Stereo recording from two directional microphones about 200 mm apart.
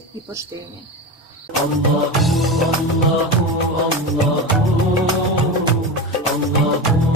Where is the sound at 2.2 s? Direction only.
Centre (ahead or behind).